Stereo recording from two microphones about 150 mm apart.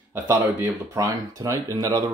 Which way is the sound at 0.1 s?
15° right (ahead or behind).